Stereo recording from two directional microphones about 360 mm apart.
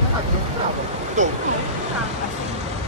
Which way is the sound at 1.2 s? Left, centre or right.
Right.